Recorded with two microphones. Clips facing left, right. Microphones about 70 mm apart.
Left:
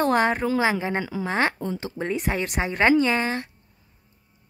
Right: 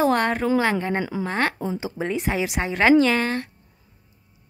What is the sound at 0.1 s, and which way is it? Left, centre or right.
A woman's voice, centre.